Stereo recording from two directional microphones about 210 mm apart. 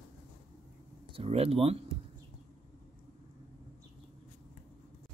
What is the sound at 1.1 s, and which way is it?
Speech, 30° right (ahead or behind).